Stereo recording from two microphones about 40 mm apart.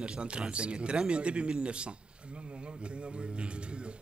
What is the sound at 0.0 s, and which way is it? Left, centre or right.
A man's voice, right.